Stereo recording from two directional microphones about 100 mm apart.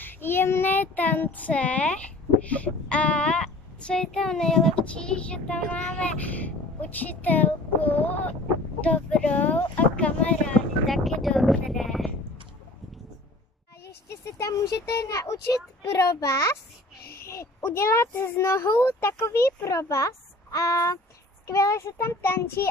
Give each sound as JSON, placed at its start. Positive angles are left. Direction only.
{"t": 0.0, "sound": "child singing", "side_deg": 20}
{"t": 2.4, "sound": "speech", "side_deg": 15}
{"t": 10.9, "sound": "speech", "side_deg": 0}
{"t": 14.2, "sound": "a child's voice", "side_deg": 35}